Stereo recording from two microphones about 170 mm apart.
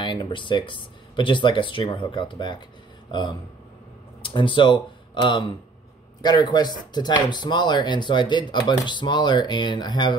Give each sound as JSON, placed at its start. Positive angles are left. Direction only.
{"t": 0.0, "sound": "speech", "side_deg": 25}